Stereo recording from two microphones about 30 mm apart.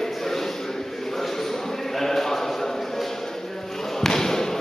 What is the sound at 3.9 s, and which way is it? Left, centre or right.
Basketball bounce, centre.